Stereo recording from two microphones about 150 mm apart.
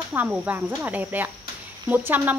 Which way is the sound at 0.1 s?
10° right (ahead or behind).